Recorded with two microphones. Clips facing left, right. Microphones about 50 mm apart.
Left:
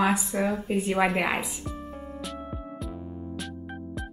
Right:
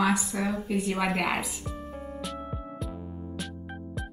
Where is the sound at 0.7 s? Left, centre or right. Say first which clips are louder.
Left 3 dB; left.